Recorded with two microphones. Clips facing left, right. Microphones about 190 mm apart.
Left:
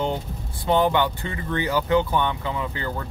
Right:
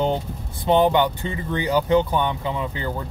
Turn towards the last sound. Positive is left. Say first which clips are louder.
# right 2 dB
turn(degrees=-20)  # may be behind; listen again after turning